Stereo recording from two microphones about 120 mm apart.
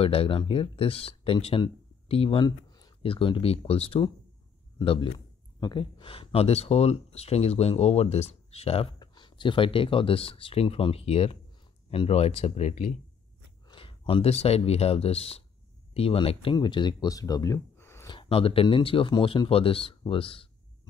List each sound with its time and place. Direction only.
0.0 s speech: 55° left (ahead or behind); by 2.9 s 35° left (ahead or behind)
3.0 s speech: 50° left (ahead or behind)
5.6 s speech: 35° left (ahead or behind); by 8.9 s 60° left (ahead or behind)
9.0 s speech: 40° left (ahead or behind); by 12.9 s 65° left (ahead or behind)
13.7 s speech: 45° left (ahead or behind); by 18.0 s 20° left (ahead or behind)
18.0 s speech: 45° left (ahead or behind)